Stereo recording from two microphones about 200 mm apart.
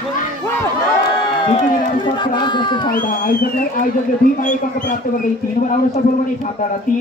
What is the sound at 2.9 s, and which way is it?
Speech, 45° left (ahead or behind).